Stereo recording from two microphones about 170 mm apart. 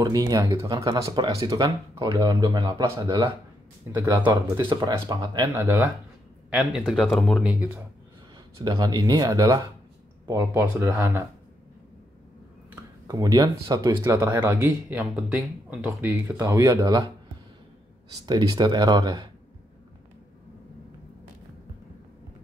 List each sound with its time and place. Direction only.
0.0 s speech: 20° right (ahead or behind)
5.6 s speech: 10° right (ahead or behind)
8.5 s speech: 20° right (ahead or behind)
13.0 s speech: 20° right (ahead or behind)
18.2 s speech: 25° right (ahead or behind)